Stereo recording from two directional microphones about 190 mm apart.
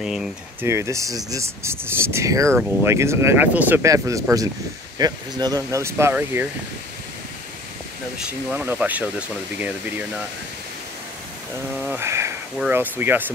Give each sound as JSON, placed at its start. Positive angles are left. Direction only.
{"t": 0.0, "sound": "speech", "side_deg": -5}
{"t": 0.7, "sound": "speech", "side_deg": -15}
{"t": 8.3, "sound": "speech", "side_deg": -5}
{"t": 11.8, "sound": "speech", "side_deg": -10}